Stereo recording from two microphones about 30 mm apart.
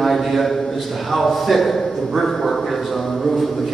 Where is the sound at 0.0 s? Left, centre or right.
Centre.